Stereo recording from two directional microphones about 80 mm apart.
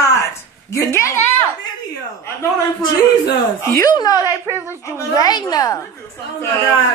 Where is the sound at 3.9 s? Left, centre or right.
Left.